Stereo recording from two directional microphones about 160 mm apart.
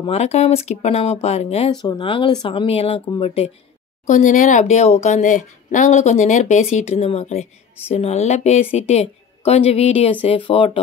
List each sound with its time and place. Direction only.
0.1 s speech: 45° left (ahead or behind)
1.8 s speech: 30° left (ahead or behind)
4.1 s a woman's voice: 50° left (ahead or behind); by 10.8 s 30° left (ahead or behind)